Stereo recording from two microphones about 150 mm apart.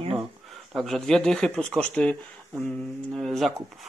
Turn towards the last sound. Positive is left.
turn(degrees=0)  # may be behind; listen again after turning